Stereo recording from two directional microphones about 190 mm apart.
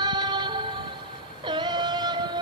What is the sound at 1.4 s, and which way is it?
Synthetic singing, 25° right (ahead or behind).